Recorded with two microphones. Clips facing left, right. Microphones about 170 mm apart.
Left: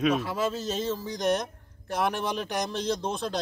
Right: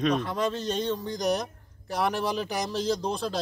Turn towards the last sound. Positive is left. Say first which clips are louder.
# right 1 dB
turn(degrees=0)  # may be behind; listen again after turning